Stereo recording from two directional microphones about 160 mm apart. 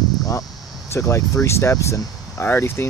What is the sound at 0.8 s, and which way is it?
Speech, 20° left (ahead or behind).